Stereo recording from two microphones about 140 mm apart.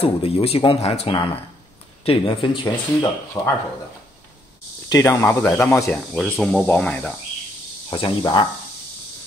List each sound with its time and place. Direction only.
0.0 s speech: 45° left (ahead or behind)
3.4 s speech: 20° left (ahead or behind)
4.8 s speech: 25° left (ahead or behind)
6.1 s speech: 5° left (ahead or behind)
7.9 s speech: 30° left (ahead or behind)